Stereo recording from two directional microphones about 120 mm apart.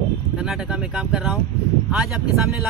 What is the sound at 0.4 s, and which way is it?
A man's voice, 5° right (ahead or behind).